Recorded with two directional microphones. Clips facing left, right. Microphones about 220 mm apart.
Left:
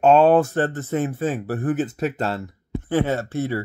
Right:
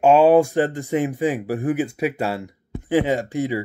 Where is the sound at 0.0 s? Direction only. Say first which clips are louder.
Right 1 dB; 10° right (ahead or behind).